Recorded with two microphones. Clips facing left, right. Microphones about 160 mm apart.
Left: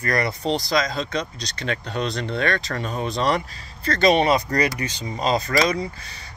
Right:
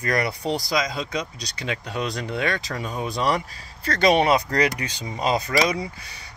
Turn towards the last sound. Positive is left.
turn(degrees=-10)  # may be behind; listen again after turning